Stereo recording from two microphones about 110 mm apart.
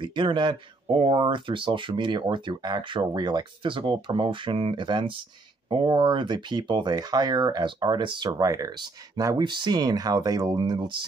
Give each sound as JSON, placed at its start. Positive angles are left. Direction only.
{"t": 0.0, "sound": "speech", "side_deg": -45}